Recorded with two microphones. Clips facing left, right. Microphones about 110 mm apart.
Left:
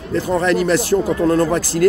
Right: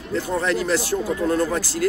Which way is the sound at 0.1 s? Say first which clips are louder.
Left 6 dB; 70° left (ahead or behind).